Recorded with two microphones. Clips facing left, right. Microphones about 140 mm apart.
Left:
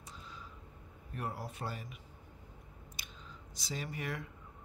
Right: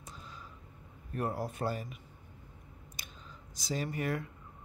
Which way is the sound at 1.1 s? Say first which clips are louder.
Right 6 dB; 45° right (ahead or behind).